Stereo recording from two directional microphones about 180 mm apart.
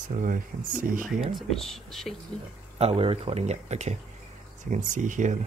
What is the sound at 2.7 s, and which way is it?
Speech, 35° right (ahead or behind).